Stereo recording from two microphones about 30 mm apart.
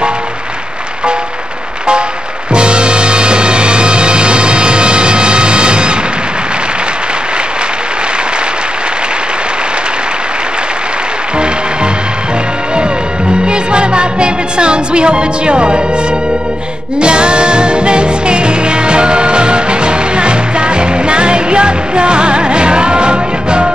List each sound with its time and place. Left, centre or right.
2.5 s music: right
13.5 s music: right
17.0 s music: right